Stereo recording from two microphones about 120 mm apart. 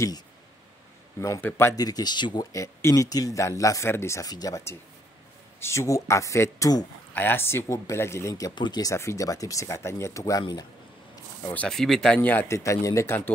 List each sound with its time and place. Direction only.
1.4 s speech: 20° left (ahead or behind)
1.8 s speech: 35° left (ahead or behind)
2.5 s speech: 25° left (ahead or behind)
7.2 s speech: 20° left (ahead or behind); by 8.9 s 35° left (ahead or behind)
8.9 s speech: 25° left (ahead or behind)
11.4 s speech: 15° left (ahead or behind)
12.2 s speech: 15° left (ahead or behind)